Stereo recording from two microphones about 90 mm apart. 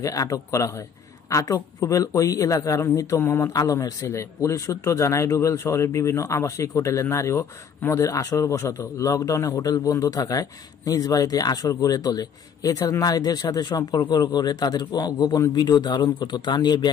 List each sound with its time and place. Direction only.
0.0 s a man's voice: 40° left (ahead or behind); by 16.9 s 55° left (ahead or behind)